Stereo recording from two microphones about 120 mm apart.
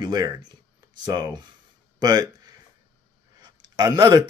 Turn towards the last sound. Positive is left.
turn(degrees=-35)  # may be behind; listen again after turning